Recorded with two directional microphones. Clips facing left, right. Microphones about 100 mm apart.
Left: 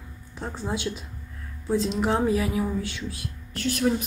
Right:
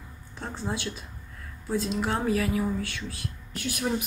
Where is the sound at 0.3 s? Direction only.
15° left (ahead or behind).